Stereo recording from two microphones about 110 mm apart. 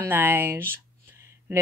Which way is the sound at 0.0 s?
20° right (ahead or behind).